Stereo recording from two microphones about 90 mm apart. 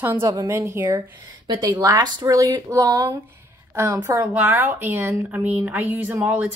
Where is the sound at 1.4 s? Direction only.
45° right (ahead or behind).